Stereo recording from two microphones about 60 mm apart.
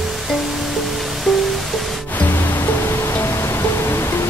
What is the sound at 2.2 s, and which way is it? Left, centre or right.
Music, left.